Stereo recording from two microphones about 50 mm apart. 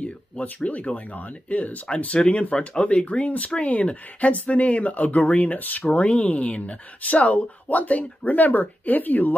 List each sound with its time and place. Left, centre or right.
0.7 s speech: left
5.9 s speech: left